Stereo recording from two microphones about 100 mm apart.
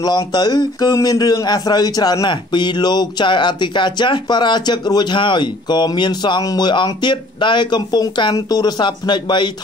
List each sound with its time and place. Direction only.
0.0 s a man's voice: 45° left (ahead or behind)